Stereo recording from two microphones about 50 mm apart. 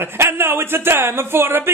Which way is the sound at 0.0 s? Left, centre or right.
Right.